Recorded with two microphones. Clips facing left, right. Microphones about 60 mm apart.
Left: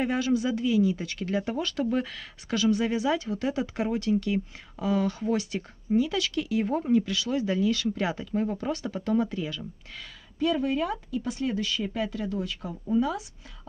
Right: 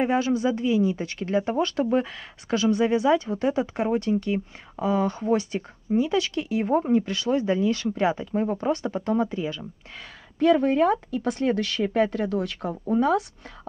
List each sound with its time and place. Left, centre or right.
0.0 s speech: right
10.4 s speech: right